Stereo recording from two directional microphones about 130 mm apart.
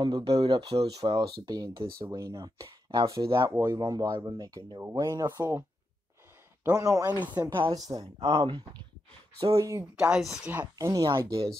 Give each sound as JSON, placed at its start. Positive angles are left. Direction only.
{"t": 0.0, "sound": "speech", "side_deg": -35}
{"t": 0.7, "sound": "speech", "side_deg": -50}
{"t": 1.1, "sound": "speech", "side_deg": -30}
{"t": 6.7, "sound": "speech", "side_deg": -25}
{"t": 7.1, "sound": "speech", "side_deg": -10}
{"t": 7.7, "sound": "speech", "side_deg": -30}
{"t": 8.2, "sound": "speech", "side_deg": -50}
{"t": 9.6, "sound": "speech", "side_deg": -25}
{"t": 9.9, "sound": "speech", "side_deg": -5}
{"t": 10.9, "sound": "speech", "side_deg": -30}